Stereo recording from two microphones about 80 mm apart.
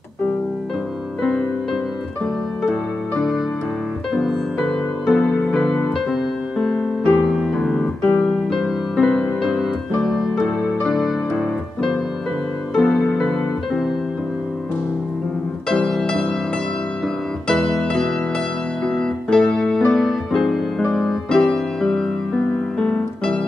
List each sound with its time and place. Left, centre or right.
2.6 s music: centre
7.5 s keyboard: centre
8.0 s keyboard: centre
8.3 s music: centre
15.7 s music: centre
17.5 s keyboard: centre
18.9 s music: centre